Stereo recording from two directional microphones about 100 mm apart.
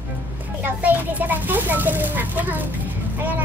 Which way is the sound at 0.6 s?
20° right (ahead or behind).